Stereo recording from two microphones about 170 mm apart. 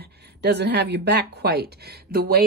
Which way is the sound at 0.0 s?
70° right (ahead or behind).